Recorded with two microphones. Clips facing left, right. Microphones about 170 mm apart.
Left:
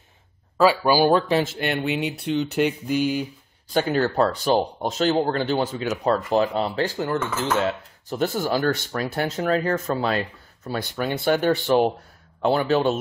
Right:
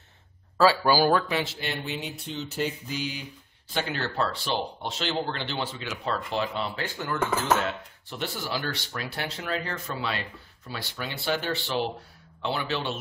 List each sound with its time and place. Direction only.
0.6 s speech: 15° left (ahead or behind)
1.3 s speech: 50° left (ahead or behind)